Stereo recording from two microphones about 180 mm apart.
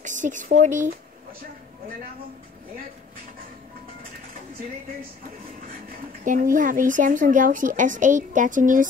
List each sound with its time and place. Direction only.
0.0 s speech: 45° right (ahead or behind)
6.2 s speech: 45° right (ahead or behind)